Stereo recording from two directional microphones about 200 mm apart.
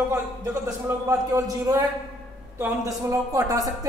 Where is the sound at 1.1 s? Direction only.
15° right (ahead or behind).